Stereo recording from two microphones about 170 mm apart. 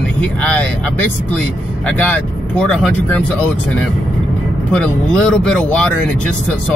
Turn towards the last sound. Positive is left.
turn(degrees=5)  # may be behind; listen again after turning